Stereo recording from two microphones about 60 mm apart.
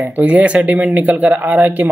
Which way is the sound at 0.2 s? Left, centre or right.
Right.